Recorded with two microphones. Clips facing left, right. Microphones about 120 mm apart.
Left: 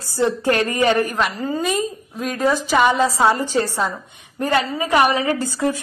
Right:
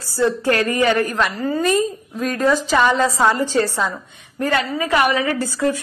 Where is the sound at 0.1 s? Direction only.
20° left (ahead or behind).